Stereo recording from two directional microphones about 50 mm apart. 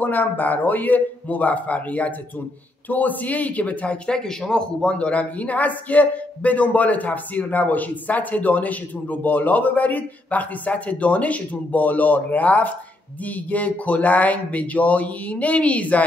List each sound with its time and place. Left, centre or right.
0.0 s speech: left